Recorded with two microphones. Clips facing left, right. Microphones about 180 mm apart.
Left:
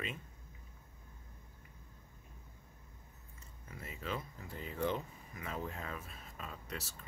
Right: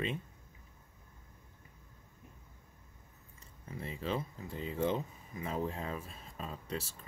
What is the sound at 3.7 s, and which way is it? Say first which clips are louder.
Speech: right 5 dB; 30° right (ahead or behind).